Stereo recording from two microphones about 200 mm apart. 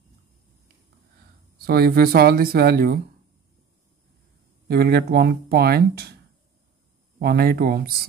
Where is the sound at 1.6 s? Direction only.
50° right (ahead or behind).